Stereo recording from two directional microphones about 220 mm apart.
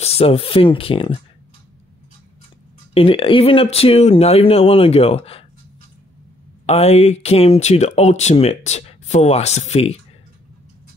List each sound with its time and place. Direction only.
0.0 s speech: 25° left (ahead or behind)
2.9 s speech: 25° left (ahead or behind)
6.6 s speech: 30° left (ahead or behind)